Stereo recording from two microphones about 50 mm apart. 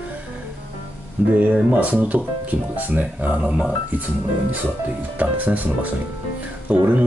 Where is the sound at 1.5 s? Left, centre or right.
Right.